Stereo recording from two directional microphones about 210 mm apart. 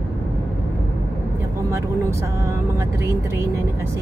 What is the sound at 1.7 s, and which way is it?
Speech, 15° right (ahead or behind).